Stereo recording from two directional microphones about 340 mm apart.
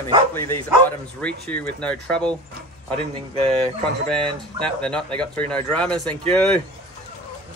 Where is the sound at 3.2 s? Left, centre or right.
Centre.